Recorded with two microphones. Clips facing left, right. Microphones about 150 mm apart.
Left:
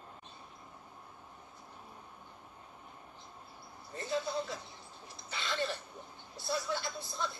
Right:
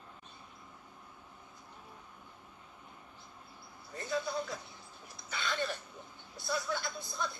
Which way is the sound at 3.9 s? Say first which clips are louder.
Even; 30° left (ahead or behind).